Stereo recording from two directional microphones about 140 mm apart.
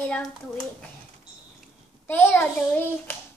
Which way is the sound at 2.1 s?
15° left (ahead or behind).